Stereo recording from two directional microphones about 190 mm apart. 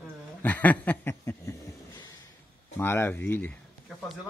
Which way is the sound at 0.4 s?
10° left (ahead or behind).